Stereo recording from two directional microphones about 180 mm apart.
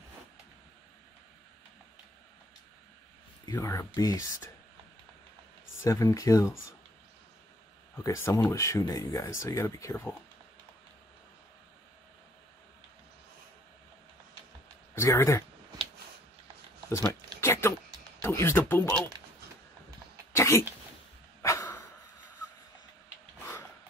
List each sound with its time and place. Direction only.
3.5 s speech: 15° left (ahead or behind)
5.8 s speech: 15° left (ahead or behind)
7.9 s speech: 15° left (ahead or behind)
15.0 s speech: 15° left (ahead or behind)
16.9 s speech: 15° left (ahead or behind)
17.4 s a sound: 15° left (ahead or behind)
18.2 s speech: 15° left (ahead or behind)
18.9 s speech: 25° right (ahead or behind)
20.3 s throat clearing: 15° left (ahead or behind)
21.4 s a sound: 15° left (ahead or behind)